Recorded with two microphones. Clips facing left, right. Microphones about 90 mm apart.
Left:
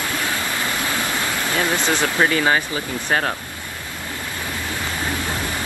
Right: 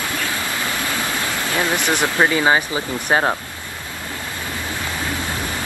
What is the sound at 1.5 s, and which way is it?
Speech, 20° right (ahead or behind).